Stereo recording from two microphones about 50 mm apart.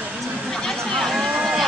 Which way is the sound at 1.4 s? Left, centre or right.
Centre.